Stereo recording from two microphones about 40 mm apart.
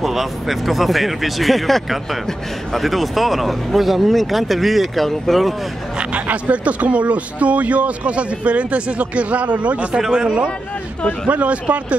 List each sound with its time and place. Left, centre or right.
0.0 s speech: centre
6.2 s speech: right